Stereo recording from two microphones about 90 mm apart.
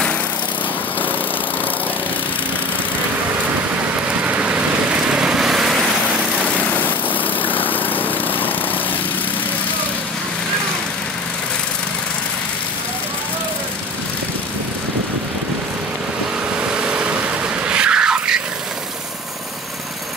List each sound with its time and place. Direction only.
3.4 s vehicle: 15° right (ahead or behind)
6.4 s vehicle: 20° left (ahead or behind)
7.4 s lawn mower: 20° left (ahead or behind)
16.5 s vehicle: 10° right (ahead or behind)